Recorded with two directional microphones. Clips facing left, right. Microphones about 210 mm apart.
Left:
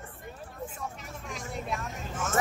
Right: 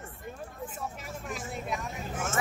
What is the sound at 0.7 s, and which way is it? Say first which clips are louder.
Vehicle: right 1 dB; 5° right (ahead or behind).